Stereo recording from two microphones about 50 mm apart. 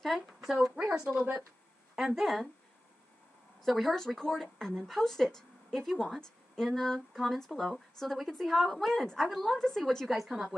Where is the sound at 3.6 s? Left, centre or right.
Centre.